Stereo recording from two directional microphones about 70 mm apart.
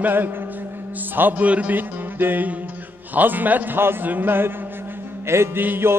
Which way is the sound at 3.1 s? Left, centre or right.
Right.